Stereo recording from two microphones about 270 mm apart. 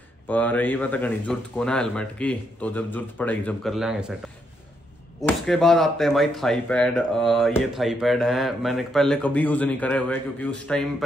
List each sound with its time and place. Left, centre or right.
0.3 s speech: centre
5.2 s speech: centre